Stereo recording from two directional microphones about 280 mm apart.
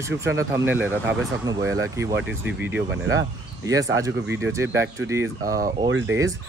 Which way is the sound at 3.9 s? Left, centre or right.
Centre.